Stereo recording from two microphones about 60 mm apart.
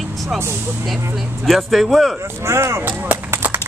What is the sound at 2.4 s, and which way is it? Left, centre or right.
Speech, right.